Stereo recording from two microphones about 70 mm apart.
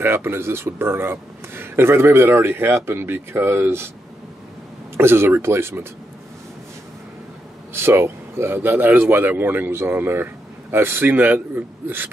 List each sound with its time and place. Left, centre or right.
0.0 s speech: right
4.9 s speech: right
7.7 s speech: right